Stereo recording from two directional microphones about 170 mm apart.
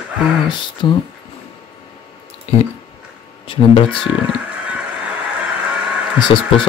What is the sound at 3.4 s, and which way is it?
Speech, 30° left (ahead or behind).